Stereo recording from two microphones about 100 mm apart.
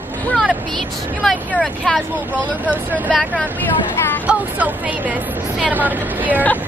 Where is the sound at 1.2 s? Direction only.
15° left (ahead or behind).